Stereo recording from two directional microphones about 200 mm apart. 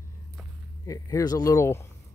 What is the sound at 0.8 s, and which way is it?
Speech, 15° left (ahead or behind).